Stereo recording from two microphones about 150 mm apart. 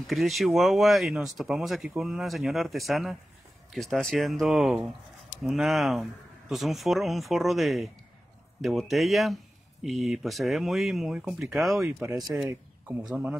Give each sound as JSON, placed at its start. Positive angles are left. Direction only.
{"t": 0.0, "sound": "a man's voice", "side_deg": 0}